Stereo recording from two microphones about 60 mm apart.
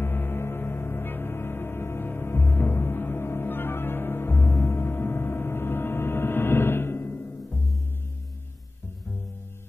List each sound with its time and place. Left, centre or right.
0.0 s music: left
4.5 s music: left
4.7 s a sound: left